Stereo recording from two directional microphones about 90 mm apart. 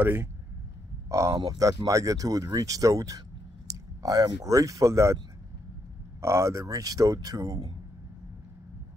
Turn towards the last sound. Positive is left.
turn(degrees=-40)  # may be behind; listen again after turning